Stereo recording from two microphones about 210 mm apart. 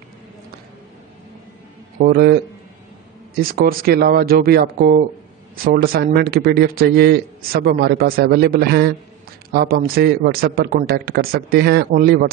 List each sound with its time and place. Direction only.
2.0 s a man's voice: 40° right (ahead or behind)